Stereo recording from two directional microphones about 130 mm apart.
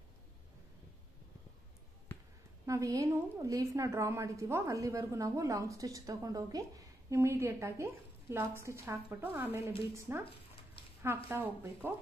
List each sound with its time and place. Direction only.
2.6 s a woman's voice: 25° right (ahead or behind)
11.2 s speech: 15° right (ahead or behind)